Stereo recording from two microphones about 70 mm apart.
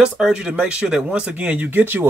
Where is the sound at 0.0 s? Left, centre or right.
Centre.